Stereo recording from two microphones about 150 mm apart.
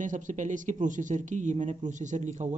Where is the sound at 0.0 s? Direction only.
55° right (ahead or behind).